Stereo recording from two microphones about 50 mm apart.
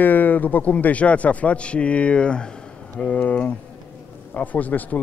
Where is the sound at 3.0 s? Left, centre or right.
Left.